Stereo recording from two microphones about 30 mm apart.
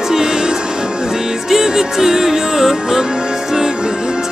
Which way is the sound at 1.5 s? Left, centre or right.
Centre.